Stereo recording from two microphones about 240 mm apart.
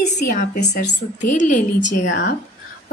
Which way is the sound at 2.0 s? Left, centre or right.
Left.